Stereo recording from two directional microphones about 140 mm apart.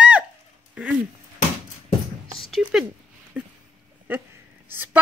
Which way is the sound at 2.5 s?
5° right (ahead or behind).